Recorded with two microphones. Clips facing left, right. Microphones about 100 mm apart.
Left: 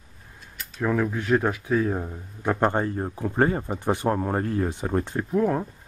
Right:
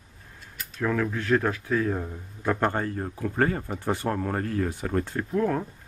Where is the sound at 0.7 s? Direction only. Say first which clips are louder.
Left 2 dB; 15° left (ahead or behind).